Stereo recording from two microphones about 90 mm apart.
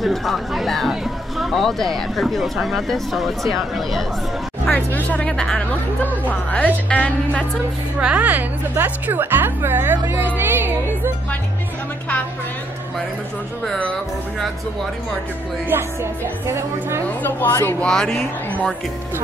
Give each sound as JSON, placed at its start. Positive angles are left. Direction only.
{"t": 0.0, "sound": "chatter", "side_deg": 0}
{"t": 1.4, "sound": "speech", "side_deg": 0}
{"t": 4.6, "sound": "speech", "side_deg": 15}
{"t": 8.0, "sound": "a woman's voice", "side_deg": -15}
{"t": 15.7, "sound": "a woman's voice", "side_deg": -30}
{"t": 17.2, "sound": "a woman's voice", "side_deg": 20}
{"t": 17.7, "sound": "speech", "side_deg": 5}